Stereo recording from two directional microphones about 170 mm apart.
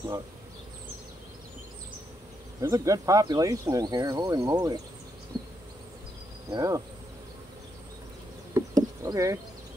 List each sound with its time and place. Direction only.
2.6 s speech: 20° right (ahead or behind)
5.3 s bee: 25° right (ahead or behind)
6.5 s speech: 20° right (ahead or behind)
8.5 s insect: 20° right (ahead or behind)